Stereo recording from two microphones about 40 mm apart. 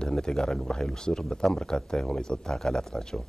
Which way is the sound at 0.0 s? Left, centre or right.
Centre.